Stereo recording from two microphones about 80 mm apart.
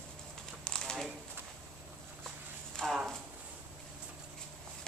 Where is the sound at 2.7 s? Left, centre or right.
Centre.